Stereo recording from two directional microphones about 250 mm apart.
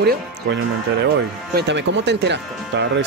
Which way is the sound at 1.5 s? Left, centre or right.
Right.